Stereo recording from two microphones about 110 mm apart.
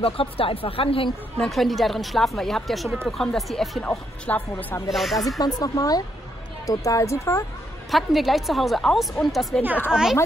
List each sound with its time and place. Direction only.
0.0 s speech: 55° left (ahead or behind)
1.4 s speech: centre (ahead or behind)
4.3 s a woman's voice: 15° left (ahead or behind)
4.8 s speech: centre (ahead or behind)
5.4 s a woman's voice: 30° left (ahead or behind)
7.9 s speech: centre (ahead or behind)